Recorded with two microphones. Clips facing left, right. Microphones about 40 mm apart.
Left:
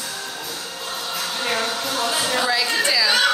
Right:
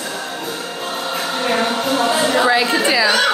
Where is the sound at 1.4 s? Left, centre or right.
Right.